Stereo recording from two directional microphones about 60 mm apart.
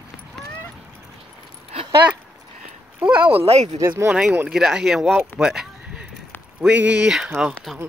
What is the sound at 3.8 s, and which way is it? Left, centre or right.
Speech, right.